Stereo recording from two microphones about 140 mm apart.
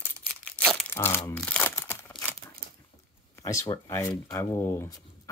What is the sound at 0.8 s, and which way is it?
Crumpling, 20° left (ahead or behind).